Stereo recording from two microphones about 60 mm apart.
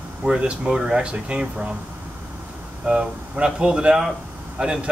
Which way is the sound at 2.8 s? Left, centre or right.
Centre.